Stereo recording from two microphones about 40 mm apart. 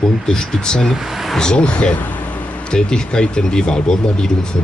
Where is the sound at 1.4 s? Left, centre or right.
Left.